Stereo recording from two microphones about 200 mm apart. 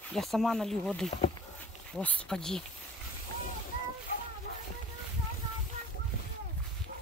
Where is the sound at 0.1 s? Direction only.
Centre (ahead or behind).